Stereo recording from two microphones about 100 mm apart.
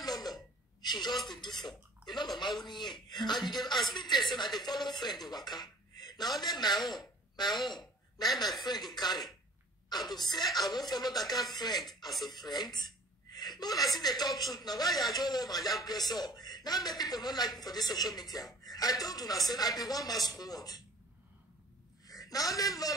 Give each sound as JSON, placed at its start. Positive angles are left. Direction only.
{"t": 0.0, "sound": "a sound", "side_deg": 40}
{"t": 1.3, "sound": "dishes", "side_deg": 50}
{"t": 2.0, "sound": "speech", "side_deg": 45}
{"t": 12.3, "sound": "chuckle", "side_deg": 45}
{"t": 13.9, "sound": "a man's voice", "side_deg": 40}
{"t": 22.0, "sound": "a woman's voice", "side_deg": 40}